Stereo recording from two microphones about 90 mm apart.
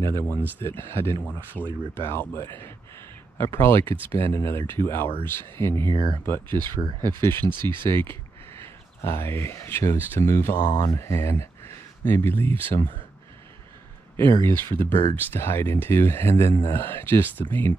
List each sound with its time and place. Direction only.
0.0 s speech: 30° left (ahead or behind)
3.4 s speech: 30° left (ahead or behind)
10.6 s speech: 55° left (ahead or behind)
11.0 s speech: 30° left (ahead or behind)
14.4 s speech: 25° left (ahead or behind)